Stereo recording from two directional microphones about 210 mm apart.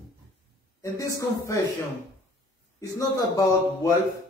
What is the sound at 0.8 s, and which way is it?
Speech, 15° left (ahead or behind).